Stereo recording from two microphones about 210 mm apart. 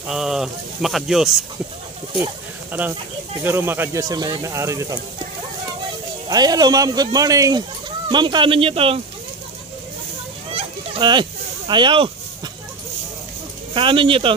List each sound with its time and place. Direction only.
0.0 s speech: 5° right (ahead or behind)
3.4 s speech: 10° right (ahead or behind)
6.2 s speech: 20° right (ahead or behind)
10.5 s a sound: 30° right (ahead or behind)
13.7 s speech: 25° right (ahead or behind)